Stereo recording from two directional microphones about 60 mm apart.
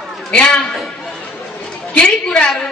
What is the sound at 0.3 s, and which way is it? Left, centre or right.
Speech, centre.